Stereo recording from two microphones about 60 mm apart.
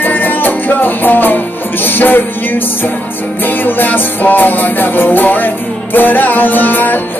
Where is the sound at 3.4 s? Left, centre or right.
Left.